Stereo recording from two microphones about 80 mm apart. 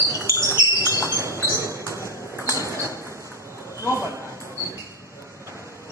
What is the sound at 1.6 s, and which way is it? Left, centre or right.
Ping, right.